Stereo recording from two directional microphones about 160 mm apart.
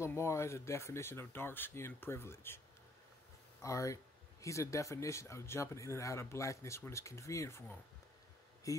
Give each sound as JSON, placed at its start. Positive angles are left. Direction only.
{"t": 0.0, "sound": "speech", "side_deg": 15}
{"t": 3.6, "sound": "speech", "side_deg": 20}